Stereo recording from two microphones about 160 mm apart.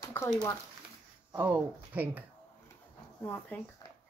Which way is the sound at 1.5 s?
10° right (ahead or behind).